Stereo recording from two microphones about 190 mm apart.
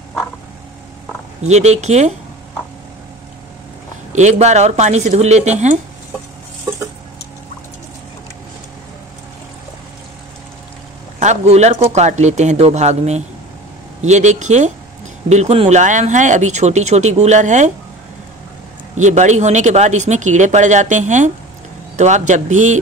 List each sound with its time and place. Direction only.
1.5 s speech: 35° right (ahead or behind)
4.1 s speech: 35° right (ahead or behind)
11.1 s speech: 35° right (ahead or behind)
18.9 s speech: 40° right (ahead or behind)